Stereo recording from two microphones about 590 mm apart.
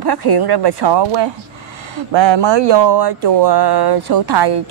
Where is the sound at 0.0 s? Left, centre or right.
Right.